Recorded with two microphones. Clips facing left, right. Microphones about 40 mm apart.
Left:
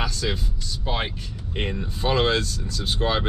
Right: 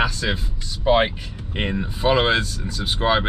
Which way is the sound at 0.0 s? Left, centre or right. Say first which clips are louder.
Right 5 dB; right.